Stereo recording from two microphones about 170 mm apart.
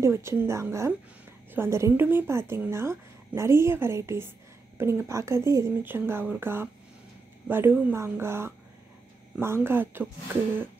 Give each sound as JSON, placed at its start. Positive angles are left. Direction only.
{"t": 0.0, "sound": "a woman's voice", "side_deg": -15}